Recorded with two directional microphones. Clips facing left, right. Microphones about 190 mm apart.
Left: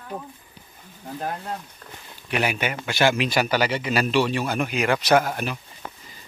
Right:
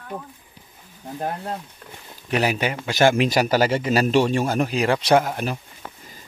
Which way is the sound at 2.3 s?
35° right (ahead or behind).